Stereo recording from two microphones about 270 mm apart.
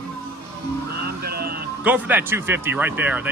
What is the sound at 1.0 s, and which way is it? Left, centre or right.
Music, right.